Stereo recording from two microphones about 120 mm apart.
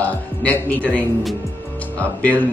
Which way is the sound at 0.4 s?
10° left (ahead or behind).